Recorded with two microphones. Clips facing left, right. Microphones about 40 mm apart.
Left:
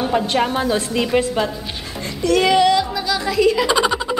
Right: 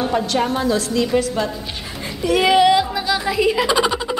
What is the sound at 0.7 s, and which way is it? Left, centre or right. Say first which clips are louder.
Speech: even; left.